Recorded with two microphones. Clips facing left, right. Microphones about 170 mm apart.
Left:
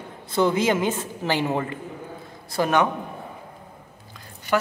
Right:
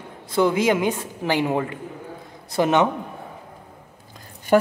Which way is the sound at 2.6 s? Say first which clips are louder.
Right 2 dB; 25° right (ahead or behind).